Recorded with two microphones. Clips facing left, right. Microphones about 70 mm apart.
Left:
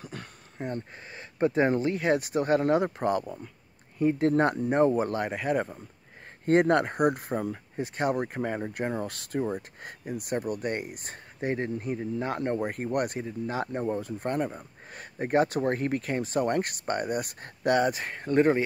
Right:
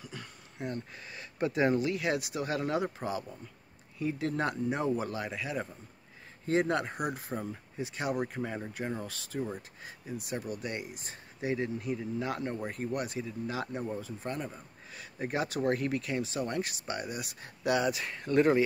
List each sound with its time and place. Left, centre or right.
0.0 s speech: left